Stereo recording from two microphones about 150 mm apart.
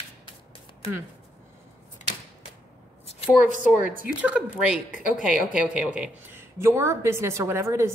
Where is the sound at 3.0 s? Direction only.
45° left (ahead or behind).